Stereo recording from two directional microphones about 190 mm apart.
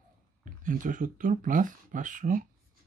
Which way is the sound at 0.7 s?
45° right (ahead or behind).